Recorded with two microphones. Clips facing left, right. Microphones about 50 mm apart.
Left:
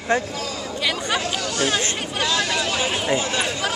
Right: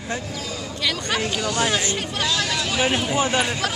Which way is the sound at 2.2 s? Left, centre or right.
Centre.